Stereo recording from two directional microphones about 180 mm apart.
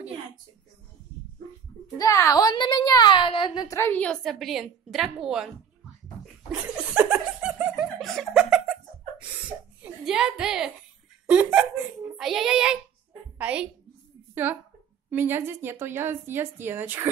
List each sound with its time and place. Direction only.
2.0 s a woman's voice: 20° left (ahead or behind); by 5.5 s 5° right (ahead or behind)
6.5 s laughter: 10° right (ahead or behind)
9.8 s a woman's voice: 5° right (ahead or behind)